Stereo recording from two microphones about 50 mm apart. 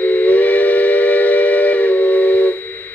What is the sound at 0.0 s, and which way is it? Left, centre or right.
Steam whistle, left.